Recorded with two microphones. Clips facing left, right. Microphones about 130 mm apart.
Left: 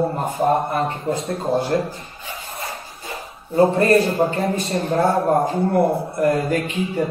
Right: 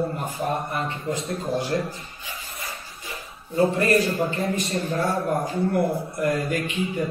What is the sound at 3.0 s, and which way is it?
A man's voice, 30° left (ahead or behind).